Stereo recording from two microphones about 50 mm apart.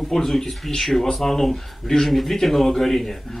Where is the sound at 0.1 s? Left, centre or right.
Centre.